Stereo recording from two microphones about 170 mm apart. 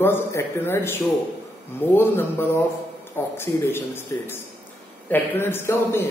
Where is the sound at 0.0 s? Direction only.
15° left (ahead or behind).